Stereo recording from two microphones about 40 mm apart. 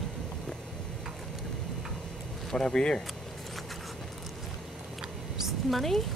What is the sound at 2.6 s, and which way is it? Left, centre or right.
Speech, left.